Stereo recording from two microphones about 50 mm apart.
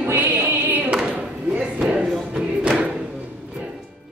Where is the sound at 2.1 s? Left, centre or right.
Centre.